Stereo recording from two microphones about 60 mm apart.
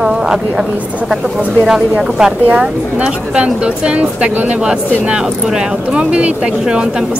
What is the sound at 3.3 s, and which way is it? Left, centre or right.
A woman's voice, centre.